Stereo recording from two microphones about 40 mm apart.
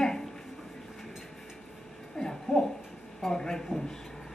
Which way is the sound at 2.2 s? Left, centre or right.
Centre.